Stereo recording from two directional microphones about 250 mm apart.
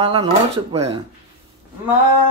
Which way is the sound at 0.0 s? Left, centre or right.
Centre.